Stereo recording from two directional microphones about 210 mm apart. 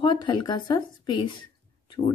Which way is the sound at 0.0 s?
20° left (ahead or behind).